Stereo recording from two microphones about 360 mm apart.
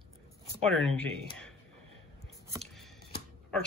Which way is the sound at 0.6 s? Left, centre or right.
Centre.